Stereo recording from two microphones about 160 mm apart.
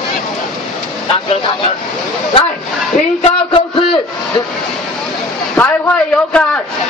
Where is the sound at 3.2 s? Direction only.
35° left (ahead or behind).